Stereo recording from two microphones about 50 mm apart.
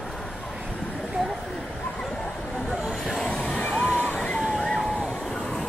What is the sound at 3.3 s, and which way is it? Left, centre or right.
Vehicle, centre.